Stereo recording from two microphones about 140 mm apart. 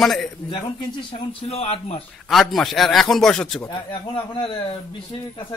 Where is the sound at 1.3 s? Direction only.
45° left (ahead or behind).